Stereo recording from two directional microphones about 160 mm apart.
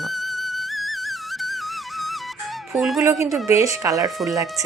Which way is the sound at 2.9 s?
15° right (ahead or behind).